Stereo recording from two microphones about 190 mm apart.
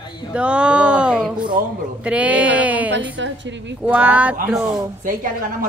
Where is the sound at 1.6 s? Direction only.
50° right (ahead or behind).